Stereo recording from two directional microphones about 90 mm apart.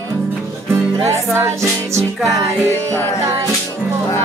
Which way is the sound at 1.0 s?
30° right (ahead or behind).